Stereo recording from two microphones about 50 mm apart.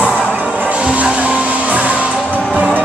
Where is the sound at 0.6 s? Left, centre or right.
Right.